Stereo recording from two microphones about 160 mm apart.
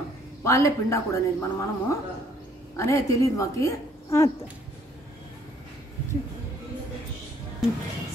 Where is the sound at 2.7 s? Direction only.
20° left (ahead or behind).